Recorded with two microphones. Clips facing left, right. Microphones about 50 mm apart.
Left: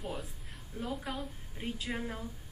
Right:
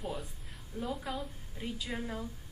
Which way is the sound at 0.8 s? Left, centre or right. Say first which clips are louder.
Right 1 dB; left.